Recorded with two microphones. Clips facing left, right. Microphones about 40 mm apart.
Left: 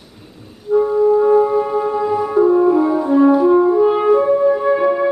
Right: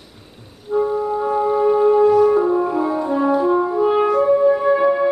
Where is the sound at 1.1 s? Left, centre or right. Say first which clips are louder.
Left 5 dB; centre.